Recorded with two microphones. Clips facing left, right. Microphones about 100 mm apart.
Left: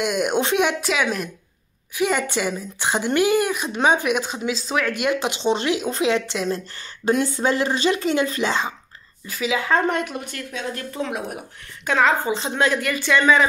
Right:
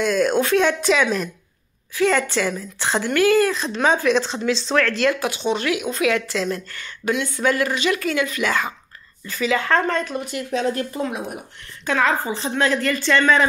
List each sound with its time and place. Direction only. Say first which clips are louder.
0.0 s a woman's voice: right 3 dB; 15° left (ahead or behind)
2.0 s a woman's voice: right 3 dB; 15° left (ahead or behind)
9.2 s a woman's voice: right 2 dB; 5° left (ahead or behind)
10.1 s speech: right 5 dB; 5° right (ahead or behind)
10.5 s speech: right 8 dB; 35° right (ahead or behind)
10.9 s speech: right 1 dB; 5° right (ahead or behind)
11.8 s a woman's voice: left 1 dB; 20° left (ahead or behind)